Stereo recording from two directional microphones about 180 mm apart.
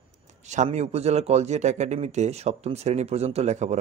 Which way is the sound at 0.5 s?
40° right (ahead or behind).